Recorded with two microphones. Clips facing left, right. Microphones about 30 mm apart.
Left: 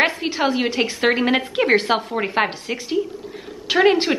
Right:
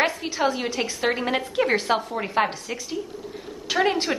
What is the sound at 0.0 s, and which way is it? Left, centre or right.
A woman's voice, left.